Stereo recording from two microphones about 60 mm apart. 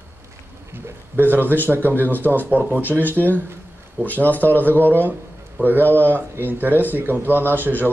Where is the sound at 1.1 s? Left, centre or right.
Right.